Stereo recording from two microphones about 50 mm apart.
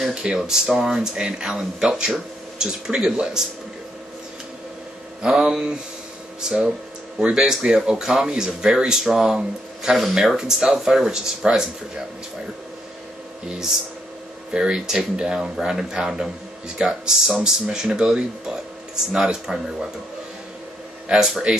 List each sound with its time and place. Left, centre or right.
0.1 s speech: centre
5.2 s speech: centre
14.5 s speech: centre
21.1 s speech: centre